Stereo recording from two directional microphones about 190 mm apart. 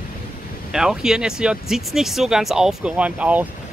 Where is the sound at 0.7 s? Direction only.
5° right (ahead or behind).